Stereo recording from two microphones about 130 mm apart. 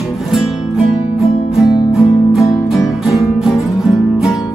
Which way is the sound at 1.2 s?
55° left (ahead or behind).